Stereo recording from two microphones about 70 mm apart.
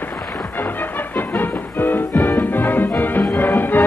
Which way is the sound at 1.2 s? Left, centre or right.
Left.